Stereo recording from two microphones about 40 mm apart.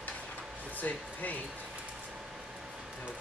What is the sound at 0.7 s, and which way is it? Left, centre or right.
Speech, left.